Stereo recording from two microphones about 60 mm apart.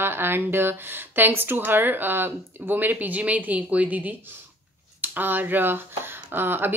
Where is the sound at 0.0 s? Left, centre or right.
Right.